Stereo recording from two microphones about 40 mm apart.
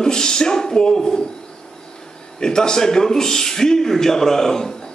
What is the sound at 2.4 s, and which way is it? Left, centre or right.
A man's voice, centre.